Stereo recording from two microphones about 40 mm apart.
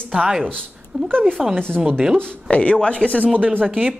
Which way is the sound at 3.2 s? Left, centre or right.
Right.